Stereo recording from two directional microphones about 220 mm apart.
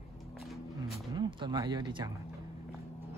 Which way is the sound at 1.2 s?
20° right (ahead or behind).